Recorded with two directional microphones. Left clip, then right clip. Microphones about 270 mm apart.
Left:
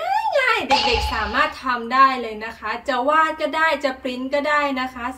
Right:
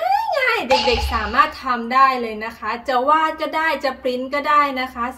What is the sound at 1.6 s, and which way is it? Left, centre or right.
A woman's voice, centre.